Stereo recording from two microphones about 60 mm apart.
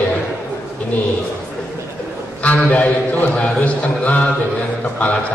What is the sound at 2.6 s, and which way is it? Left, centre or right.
A man's voice, left.